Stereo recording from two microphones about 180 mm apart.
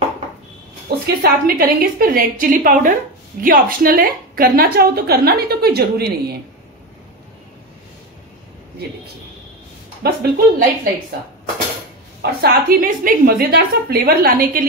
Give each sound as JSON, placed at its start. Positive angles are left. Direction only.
{"t": 0.8, "sound": "a woman's voice", "side_deg": -55}
{"t": 10.0, "sound": "a woman's voice", "side_deg": -55}
{"t": 12.2, "sound": "a woman's voice", "side_deg": -60}